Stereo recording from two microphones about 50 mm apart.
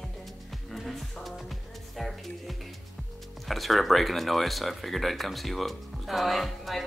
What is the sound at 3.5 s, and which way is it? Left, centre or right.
Speech, centre.